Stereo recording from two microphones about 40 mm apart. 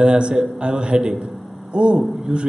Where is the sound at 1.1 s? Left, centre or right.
Right.